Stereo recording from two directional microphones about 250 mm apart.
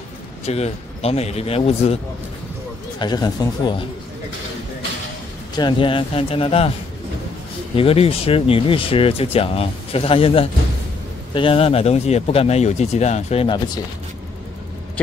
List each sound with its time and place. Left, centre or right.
0.5 s speech: left
3.0 s speech: centre
5.6 s speech: centre
7.7 s speech: left